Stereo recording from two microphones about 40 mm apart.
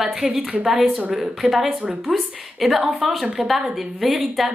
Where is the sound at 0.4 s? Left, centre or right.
Right.